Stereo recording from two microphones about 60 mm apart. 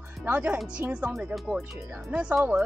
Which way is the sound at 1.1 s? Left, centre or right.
Centre.